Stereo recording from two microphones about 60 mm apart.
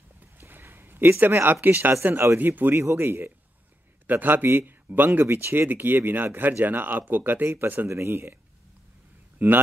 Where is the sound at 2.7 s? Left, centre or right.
Right.